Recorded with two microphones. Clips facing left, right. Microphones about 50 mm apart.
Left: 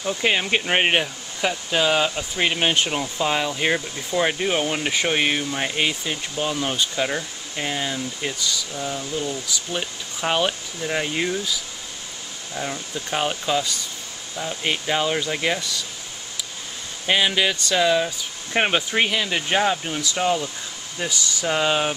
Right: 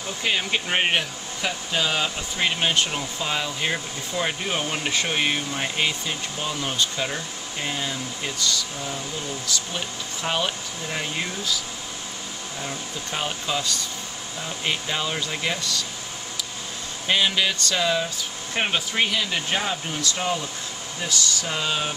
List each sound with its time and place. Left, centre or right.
0.0 s speech: centre
12.5 s speech: centre
17.1 s speech: centre
18.5 s speech: left